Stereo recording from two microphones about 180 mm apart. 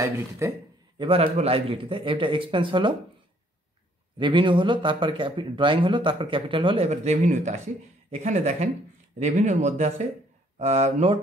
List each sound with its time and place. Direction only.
0.4 s speech: 15° right (ahead or behind)
0.9 s speech: 30° right (ahead or behind)
4.2 s speech: 25° right (ahead or behind)